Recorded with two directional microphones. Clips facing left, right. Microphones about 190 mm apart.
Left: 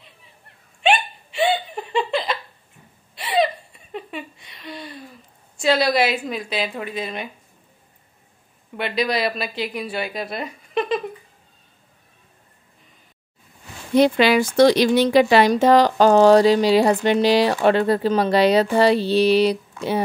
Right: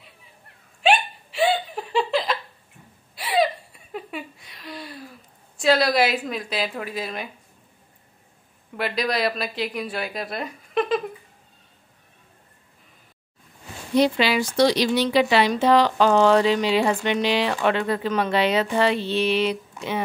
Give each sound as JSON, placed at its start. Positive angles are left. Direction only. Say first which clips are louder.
{"t": 0.8, "sound": "hiccup", "louder": "even", "side_deg": 0}
{"t": 3.2, "sound": "a sound", "louder": "left 1 dB", "side_deg": 0}
{"t": 8.7, "sound": "a woman's voice", "louder": "left 2 dB", "side_deg": 0}
{"t": 13.9, "sound": "a woman's voice", "louder": "left 4 dB", "side_deg": 55}